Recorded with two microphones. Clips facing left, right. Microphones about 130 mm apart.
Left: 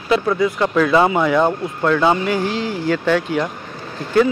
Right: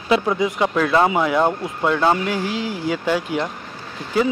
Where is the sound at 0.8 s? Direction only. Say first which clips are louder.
Left 3 dB; centre (ahead or behind).